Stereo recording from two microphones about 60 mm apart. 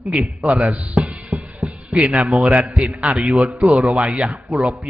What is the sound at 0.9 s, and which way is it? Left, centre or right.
Music, right.